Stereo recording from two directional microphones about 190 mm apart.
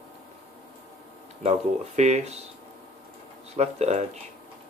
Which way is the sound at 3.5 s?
35° right (ahead or behind).